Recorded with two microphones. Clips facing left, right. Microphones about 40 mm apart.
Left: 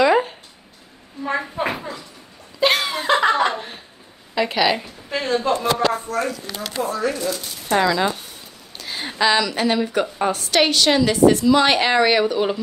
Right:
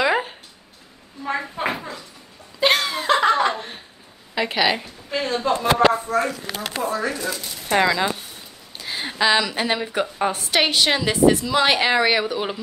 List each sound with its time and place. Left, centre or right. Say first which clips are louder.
0.0 s a sound: left 4 dB; centre
1.2 s a woman's voice: left 2 dB; centre
2.6 s laughter: left 1 dB; centre
4.4 s speech: left 2 dB; centre
4.8 s speech: left 1 dB; centre
5.7 s speech: right 5 dB; right
6.0 s speech: right 2 dB; centre
8.7 s speech: even; centre